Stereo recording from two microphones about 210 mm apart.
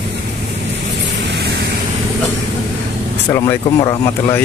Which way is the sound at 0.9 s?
55° right (ahead or behind).